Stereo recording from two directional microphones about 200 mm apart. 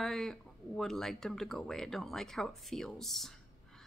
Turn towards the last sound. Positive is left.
turn(degrees=0)  # may be behind; listen again after turning